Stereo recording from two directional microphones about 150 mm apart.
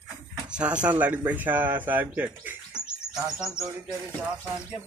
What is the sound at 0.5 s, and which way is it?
Speech, 10° right (ahead or behind).